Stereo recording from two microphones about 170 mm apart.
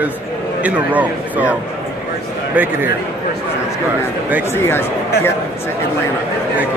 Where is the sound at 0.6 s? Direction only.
10° right (ahead or behind).